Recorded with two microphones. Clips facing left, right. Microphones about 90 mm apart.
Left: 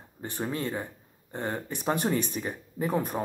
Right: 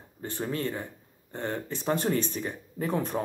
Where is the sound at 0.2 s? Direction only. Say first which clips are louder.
Even; 15° left (ahead or behind).